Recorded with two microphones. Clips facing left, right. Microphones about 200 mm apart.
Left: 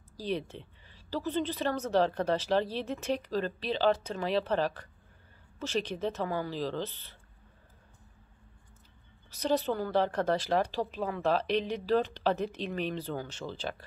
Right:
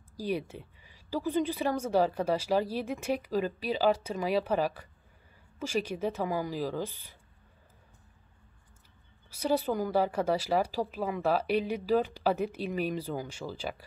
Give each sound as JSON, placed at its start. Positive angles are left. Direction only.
{"t": 0.2, "sound": "speech", "side_deg": -10}
{"t": 9.3, "sound": "speech", "side_deg": -10}